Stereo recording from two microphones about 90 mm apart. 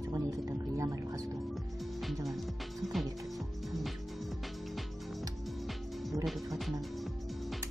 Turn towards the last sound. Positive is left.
turn(degrees=0)  # may be behind; listen again after turning